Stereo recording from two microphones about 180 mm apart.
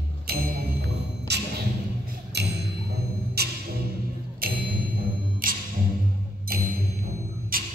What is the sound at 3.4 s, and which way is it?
Music, 60° right (ahead or behind).